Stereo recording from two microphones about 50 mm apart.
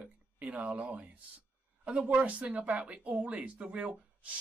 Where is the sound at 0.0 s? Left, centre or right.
Right.